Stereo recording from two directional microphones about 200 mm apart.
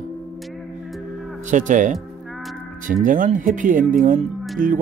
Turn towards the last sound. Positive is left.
turn(degrees=-45)  # may be behind; listen again after turning